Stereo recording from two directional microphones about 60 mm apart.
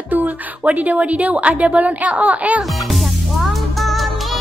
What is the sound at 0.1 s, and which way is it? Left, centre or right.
A woman's voice, right.